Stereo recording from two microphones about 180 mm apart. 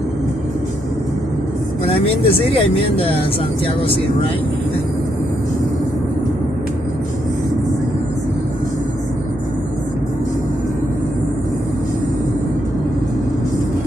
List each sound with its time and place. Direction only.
2.0 s speech: 30° left (ahead or behind)